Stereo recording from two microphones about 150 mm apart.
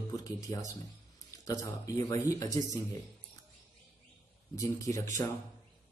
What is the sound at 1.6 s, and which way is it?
Speech, 20° left (ahead or behind).